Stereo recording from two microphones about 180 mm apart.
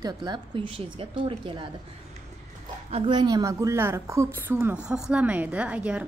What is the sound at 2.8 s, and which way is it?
A woman's voice, 30° right (ahead or behind).